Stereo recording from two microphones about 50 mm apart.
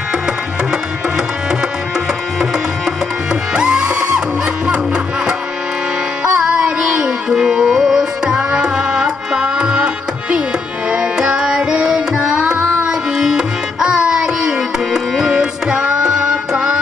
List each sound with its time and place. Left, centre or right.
3.5 s music: centre
6.2 s music: centre
10.9 s music: centre